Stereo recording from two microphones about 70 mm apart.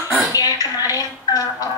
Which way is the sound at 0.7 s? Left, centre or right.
Left.